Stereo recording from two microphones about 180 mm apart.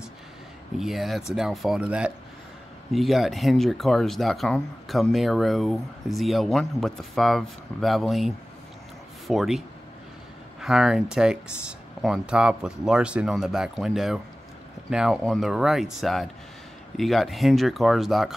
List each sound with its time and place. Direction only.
0.7 s speech: centre (ahead or behind)
9.3 s speech: centre (ahead or behind)
10.6 s speech: centre (ahead or behind)